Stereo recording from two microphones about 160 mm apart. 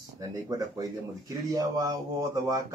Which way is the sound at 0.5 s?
20° right (ahead or behind).